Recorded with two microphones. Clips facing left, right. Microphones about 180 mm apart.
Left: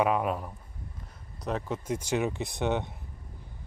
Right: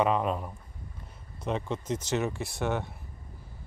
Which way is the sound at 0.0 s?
10° left (ahead or behind).